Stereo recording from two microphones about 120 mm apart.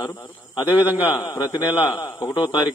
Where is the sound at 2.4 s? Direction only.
40° left (ahead or behind).